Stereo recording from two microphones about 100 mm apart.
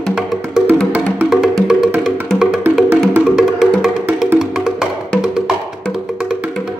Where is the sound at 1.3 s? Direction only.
Centre (ahead or behind).